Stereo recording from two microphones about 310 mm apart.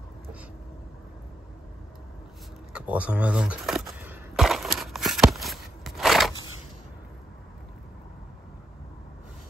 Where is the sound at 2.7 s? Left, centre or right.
Centre.